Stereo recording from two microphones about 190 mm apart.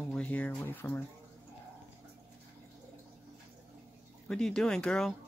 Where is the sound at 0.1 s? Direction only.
5° left (ahead or behind).